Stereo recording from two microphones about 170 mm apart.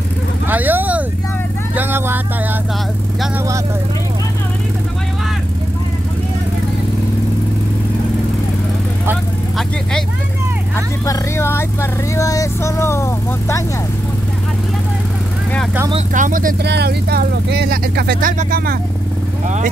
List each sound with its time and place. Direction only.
0.5 s vehicle: 10° right (ahead or behind)
11.1 s vehicle: 15° left (ahead or behind)
16.1 s speech: 50° right (ahead or behind)
16.6 s speech: 80° right
18.4 s speech: 55° right (ahead or behind)